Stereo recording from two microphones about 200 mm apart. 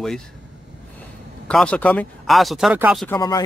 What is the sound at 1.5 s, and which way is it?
Speech, 5° left (ahead or behind).